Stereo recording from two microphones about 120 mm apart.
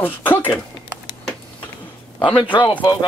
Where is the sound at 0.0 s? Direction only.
15° left (ahead or behind).